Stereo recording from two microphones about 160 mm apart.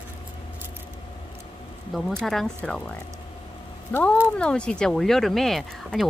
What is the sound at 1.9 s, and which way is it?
Speech, centre (ahead or behind).